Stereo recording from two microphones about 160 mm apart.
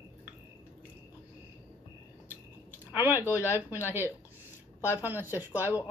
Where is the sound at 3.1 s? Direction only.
15° left (ahead or behind).